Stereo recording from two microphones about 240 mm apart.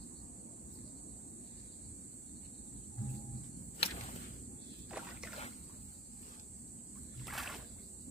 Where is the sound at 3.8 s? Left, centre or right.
Left.